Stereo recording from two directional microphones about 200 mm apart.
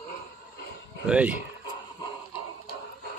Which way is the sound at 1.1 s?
5° right (ahead or behind).